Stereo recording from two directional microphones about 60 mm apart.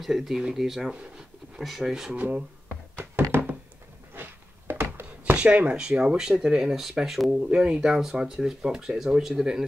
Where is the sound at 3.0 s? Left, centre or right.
Right.